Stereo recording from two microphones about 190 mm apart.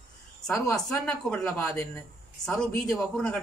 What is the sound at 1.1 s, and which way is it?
Speech, 5° left (ahead or behind).